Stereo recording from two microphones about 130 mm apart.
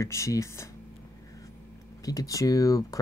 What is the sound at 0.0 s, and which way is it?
Speech, 25° left (ahead or behind).